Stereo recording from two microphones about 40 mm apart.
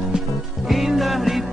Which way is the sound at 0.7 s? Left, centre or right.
Centre.